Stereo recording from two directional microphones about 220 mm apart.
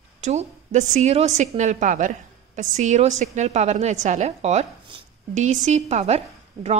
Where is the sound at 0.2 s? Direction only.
30° right (ahead or behind).